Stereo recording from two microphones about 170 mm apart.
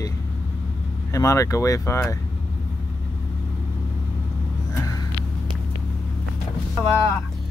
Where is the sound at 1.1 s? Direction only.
20° left (ahead or behind).